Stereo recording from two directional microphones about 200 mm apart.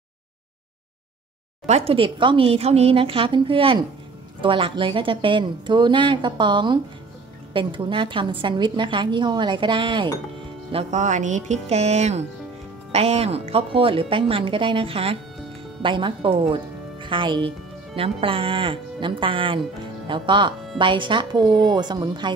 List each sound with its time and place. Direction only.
1.7 s a woman's voice: 30° right (ahead or behind)